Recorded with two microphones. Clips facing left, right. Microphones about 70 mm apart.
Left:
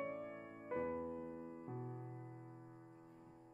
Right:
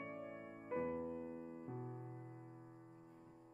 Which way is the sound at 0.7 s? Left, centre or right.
Centre.